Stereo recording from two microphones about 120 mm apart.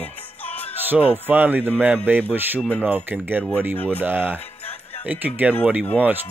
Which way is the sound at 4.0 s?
15° right (ahead or behind).